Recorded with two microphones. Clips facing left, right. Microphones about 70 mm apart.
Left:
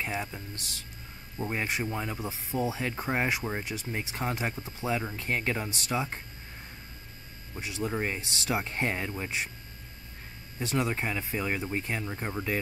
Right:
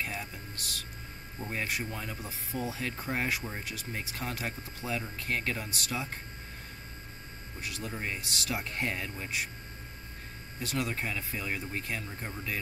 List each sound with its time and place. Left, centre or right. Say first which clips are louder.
0.0 s speech: left 4 dB; left
7.5 s speech: left 7 dB; left
10.6 s speech: left 4 dB; left